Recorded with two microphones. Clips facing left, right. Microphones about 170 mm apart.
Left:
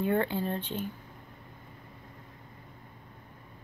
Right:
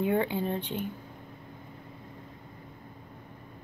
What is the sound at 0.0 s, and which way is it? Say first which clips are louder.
Speech: right 1 dB; 10° right (ahead or behind).